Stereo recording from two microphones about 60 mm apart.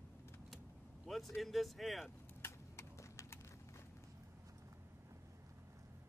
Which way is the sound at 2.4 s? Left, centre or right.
Left.